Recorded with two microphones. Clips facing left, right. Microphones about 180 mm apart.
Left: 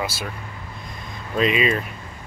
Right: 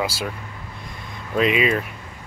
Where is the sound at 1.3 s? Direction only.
10° right (ahead or behind).